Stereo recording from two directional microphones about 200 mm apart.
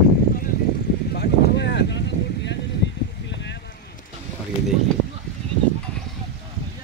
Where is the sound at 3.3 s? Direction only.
60° left (ahead or behind).